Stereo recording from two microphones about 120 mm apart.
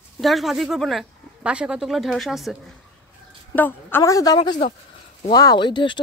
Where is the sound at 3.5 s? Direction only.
15° left (ahead or behind).